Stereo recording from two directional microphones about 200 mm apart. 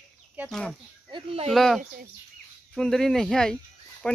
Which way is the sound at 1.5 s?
Centre (ahead or behind).